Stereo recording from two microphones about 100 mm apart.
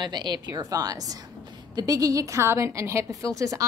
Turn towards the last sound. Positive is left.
turn(degrees=-35)  # may be behind; listen again after turning